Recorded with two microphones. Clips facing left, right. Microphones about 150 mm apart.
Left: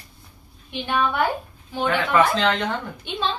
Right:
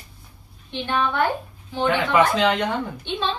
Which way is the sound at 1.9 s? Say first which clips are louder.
Even; 20° right (ahead or behind).